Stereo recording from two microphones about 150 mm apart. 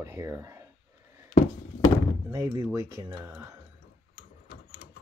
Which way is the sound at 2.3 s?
20° right (ahead or behind).